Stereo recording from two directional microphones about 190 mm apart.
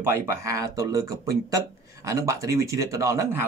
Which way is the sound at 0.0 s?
15° right (ahead or behind).